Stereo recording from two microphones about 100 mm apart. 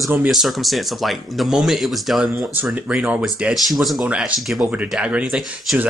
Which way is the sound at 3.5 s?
Centre (ahead or behind).